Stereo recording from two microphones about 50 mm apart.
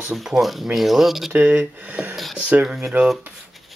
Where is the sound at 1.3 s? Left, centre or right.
Right.